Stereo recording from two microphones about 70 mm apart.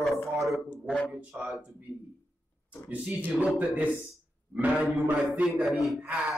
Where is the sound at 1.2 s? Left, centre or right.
Centre.